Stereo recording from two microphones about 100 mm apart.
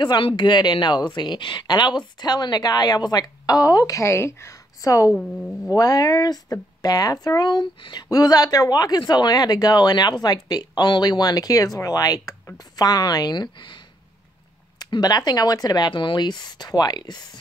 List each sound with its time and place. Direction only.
0.0 s speech: 50° left (ahead or behind); by 5.1 s 35° left (ahead or behind)
5.1 s speech: 5° left (ahead or behind)
5.8 s speech: 40° left (ahead or behind)